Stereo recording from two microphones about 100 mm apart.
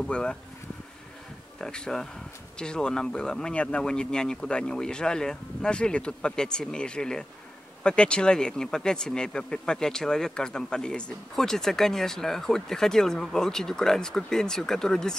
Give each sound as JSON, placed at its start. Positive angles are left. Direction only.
{"t": 0.0, "sound": "speech", "side_deg": 10}
{"t": 1.6, "sound": "speech", "side_deg": 5}